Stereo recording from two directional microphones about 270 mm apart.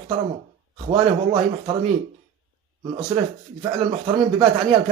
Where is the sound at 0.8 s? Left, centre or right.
Centre.